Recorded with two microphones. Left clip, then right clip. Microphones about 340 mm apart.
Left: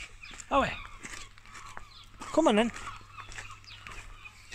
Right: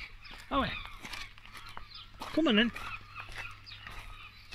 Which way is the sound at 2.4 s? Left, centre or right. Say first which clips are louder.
Left 3 dB; centre.